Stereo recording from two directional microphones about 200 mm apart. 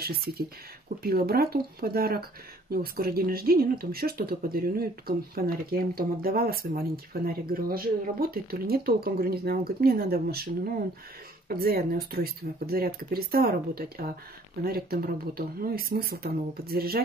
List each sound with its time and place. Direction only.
0.0 s speech: 50° right (ahead or behind)